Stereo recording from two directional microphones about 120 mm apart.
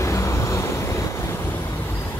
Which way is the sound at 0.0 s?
25° left (ahead or behind).